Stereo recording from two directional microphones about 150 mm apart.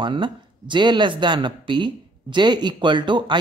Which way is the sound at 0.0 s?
30° right (ahead or behind).